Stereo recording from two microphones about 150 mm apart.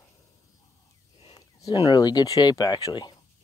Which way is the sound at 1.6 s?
25° left (ahead or behind).